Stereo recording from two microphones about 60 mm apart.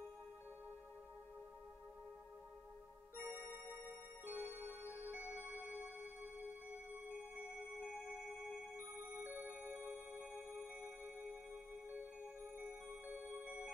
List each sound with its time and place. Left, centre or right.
3.2 s music: right
7.3 s music: centre
9.2 s music: right
12.5 s music: right